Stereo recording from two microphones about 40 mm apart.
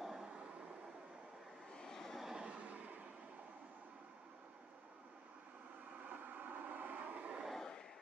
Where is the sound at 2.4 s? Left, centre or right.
Right.